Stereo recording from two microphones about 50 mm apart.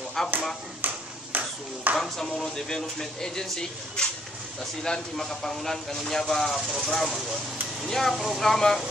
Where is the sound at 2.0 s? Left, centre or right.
Centre.